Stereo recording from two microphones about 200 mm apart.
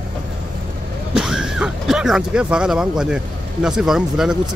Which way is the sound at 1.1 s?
Centre (ahead or behind).